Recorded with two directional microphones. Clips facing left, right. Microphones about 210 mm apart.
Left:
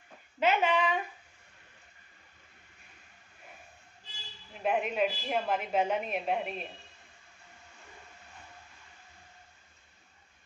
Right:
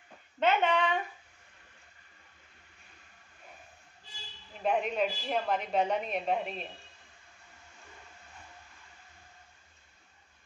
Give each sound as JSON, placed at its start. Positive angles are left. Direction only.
{"t": 0.4, "sound": "a woman's voice", "side_deg": 5}
{"t": 4.6, "sound": "a woman's voice", "side_deg": 5}